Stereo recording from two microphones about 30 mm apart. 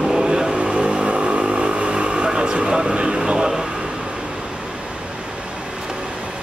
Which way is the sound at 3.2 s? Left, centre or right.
Right.